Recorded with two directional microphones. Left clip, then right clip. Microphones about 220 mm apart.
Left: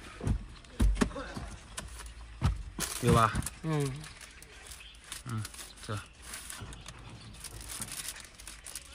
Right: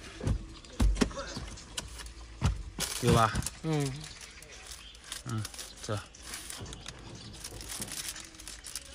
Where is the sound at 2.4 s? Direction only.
10° right (ahead or behind).